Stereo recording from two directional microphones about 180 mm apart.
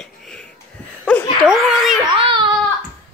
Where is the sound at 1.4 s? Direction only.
Centre (ahead or behind).